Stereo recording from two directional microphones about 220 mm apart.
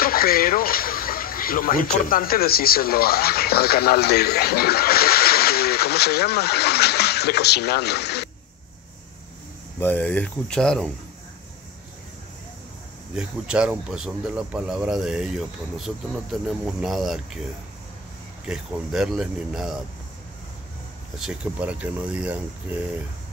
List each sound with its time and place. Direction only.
0.0 s speech: 40° left (ahead or behind)
9.8 s speech: 10° left (ahead or behind)
13.1 s speech: 5° right (ahead or behind)
18.5 s speech: 5° right (ahead or behind)
21.2 s speech: 5° right (ahead or behind)